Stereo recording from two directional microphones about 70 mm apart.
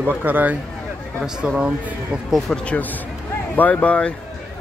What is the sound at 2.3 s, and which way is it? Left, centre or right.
Speech, centre.